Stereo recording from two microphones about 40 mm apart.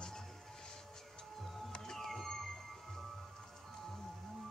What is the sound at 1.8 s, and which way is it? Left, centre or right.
Music, centre.